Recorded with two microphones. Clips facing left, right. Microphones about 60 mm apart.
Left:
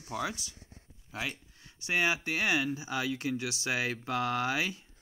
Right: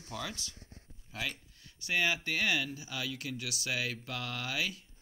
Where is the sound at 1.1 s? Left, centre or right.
Centre.